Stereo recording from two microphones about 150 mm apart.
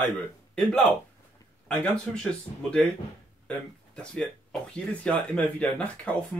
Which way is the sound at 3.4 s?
5° left (ahead or behind).